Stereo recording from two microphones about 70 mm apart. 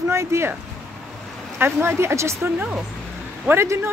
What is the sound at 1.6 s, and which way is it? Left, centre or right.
Speech, right.